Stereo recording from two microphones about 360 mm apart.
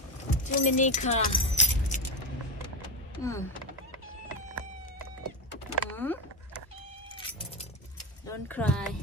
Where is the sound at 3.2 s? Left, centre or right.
Centre.